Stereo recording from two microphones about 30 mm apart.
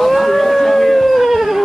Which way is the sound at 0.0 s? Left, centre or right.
Centre.